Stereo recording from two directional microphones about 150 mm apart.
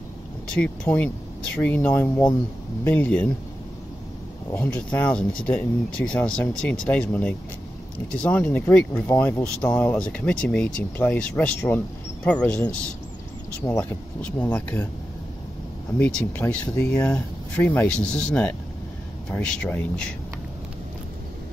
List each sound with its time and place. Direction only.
0.8 s speech: 10° left (ahead or behind)
4.6 s speech: 10° left (ahead or behind)
13.6 s speech: 20° left (ahead or behind)
16.0 s speech: 10° left (ahead or behind)